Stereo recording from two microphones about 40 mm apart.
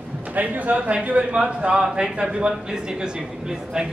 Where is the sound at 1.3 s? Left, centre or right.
Right.